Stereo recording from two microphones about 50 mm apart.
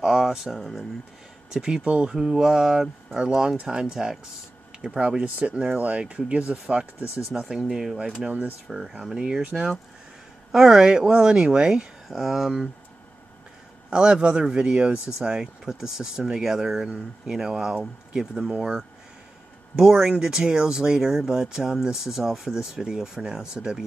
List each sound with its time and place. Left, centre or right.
0.0 s speech: centre
1.5 s speech: centre
4.8 s speech: right
7.5 s speech: centre
9.5 s speech: right
12.1 s speech: centre
13.8 s speech: centre